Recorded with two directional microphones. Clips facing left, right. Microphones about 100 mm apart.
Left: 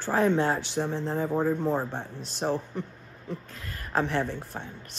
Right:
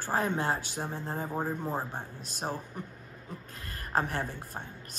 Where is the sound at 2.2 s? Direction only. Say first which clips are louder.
Left 8 dB; 45° right (ahead or behind).